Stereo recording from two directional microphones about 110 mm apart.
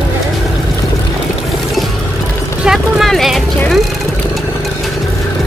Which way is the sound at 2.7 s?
Centre (ahead or behind).